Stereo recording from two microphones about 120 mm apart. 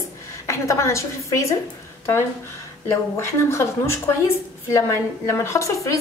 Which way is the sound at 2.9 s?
20° left (ahead or behind).